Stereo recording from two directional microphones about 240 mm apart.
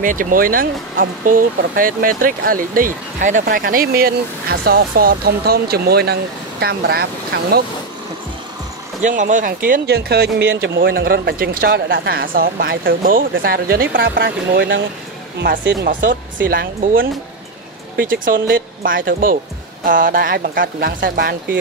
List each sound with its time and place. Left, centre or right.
0.0 s speech: right
9.0 s speech: right